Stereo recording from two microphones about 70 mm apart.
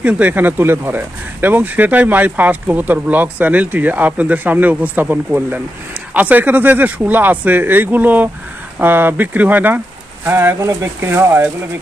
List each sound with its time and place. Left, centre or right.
0.0 s speech: right
10.6 s speech: right